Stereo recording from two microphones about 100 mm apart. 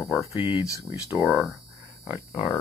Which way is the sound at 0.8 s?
30° right (ahead or behind).